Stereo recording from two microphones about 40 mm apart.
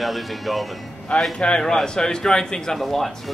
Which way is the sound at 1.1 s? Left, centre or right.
Left.